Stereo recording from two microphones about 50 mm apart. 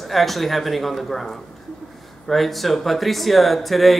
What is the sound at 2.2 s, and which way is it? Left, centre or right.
Speech, centre.